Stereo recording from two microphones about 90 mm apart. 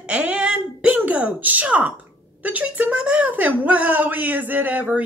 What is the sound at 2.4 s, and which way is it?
A woman's voice, 15° right (ahead or behind).